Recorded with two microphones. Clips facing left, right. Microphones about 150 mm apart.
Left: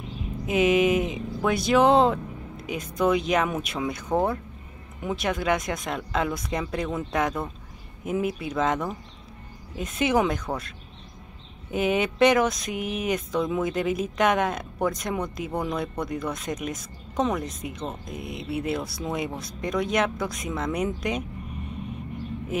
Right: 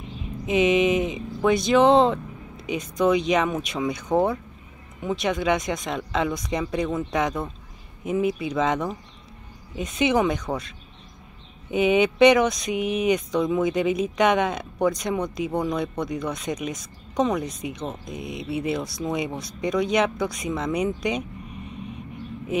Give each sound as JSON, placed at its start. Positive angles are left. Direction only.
{"t": 0.5, "sound": "speech", "side_deg": 5}
{"t": 11.7, "sound": "speech", "side_deg": 0}